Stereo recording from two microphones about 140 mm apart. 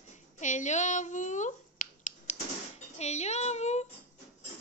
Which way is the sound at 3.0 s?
55° left (ahead or behind).